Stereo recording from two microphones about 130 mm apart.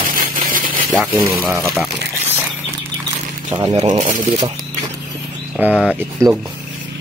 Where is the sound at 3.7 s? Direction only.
55° right (ahead or behind); by 4.2 s 70° right (ahead or behind).